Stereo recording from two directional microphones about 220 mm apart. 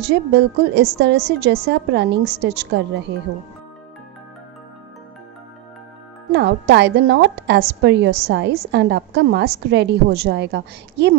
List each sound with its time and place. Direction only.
0.1 s a woman's voice: 50° right (ahead or behind)
6.3 s a woman's voice: 50° right (ahead or behind)